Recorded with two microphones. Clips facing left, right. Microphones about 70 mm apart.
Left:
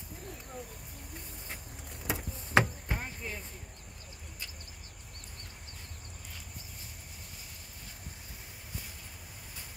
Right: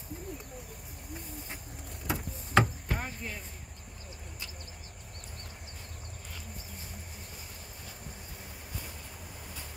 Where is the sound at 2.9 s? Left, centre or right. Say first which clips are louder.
Right 2 dB; centre.